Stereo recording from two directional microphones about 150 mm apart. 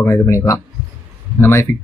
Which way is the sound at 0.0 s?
20° left (ahead or behind).